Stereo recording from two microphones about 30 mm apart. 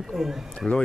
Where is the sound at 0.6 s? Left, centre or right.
Centre.